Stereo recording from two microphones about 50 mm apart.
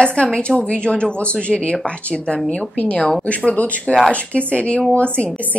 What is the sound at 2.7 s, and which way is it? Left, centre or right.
A woman's voice, left.